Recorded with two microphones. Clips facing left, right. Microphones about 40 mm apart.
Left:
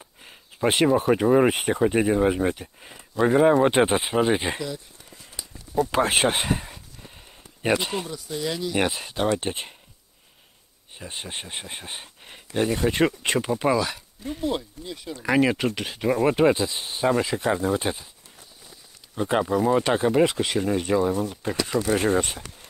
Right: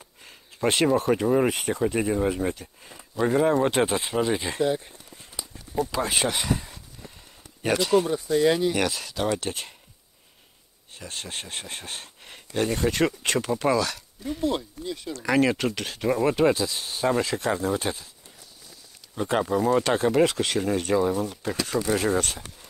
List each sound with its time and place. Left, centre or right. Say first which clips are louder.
0.0 s a sound: left 1 dB; centre
1.1 s speech: left 3 dB; centre
1.5 s speech: left 3 dB; left
4.6 s a sound: right 8 dB; right
5.9 s speech: left 6 dB; left
7.0 s a sound: right 5 dB; centre
7.6 s speech: right 3 dB; left
8.1 s speech: right 8 dB; right
8.7 s speech: left 2 dB; left
11.0 s speech: left 1 dB; centre
19.1 s speech: left 1 dB; centre
21.4 s speech: left 2 dB; centre